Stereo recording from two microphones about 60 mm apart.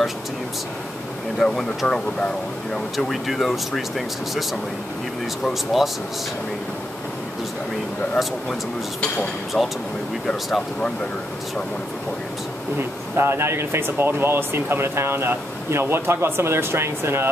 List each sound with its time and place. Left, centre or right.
1.4 s speech: centre
3.1 s speech: centre
5.5 s speech: centre
9.6 s speech: centre
12.7 s speech: right